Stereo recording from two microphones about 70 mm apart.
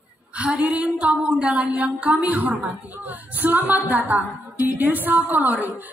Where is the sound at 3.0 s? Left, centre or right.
Right.